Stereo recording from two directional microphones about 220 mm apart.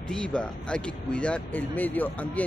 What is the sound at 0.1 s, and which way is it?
Speech, 5° left (ahead or behind).